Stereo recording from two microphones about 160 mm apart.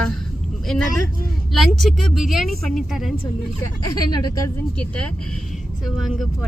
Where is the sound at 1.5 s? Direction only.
Centre (ahead or behind).